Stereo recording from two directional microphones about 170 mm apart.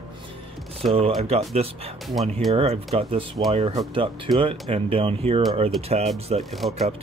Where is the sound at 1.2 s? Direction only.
35° right (ahead or behind).